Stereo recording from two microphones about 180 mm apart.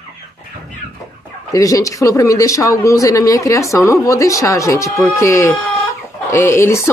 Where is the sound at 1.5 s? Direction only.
20° left (ahead or behind).